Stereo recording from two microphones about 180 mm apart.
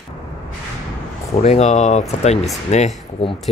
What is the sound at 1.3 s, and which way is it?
Speech, 35° left (ahead or behind).